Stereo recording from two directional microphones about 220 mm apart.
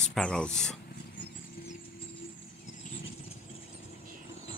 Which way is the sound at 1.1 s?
35° left (ahead or behind).